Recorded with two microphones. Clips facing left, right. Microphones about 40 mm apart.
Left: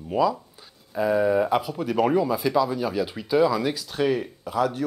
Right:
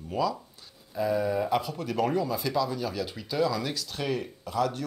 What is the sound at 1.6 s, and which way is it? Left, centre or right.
Speech, centre.